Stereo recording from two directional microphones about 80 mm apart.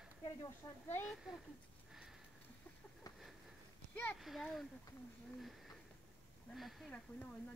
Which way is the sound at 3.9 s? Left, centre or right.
Centre.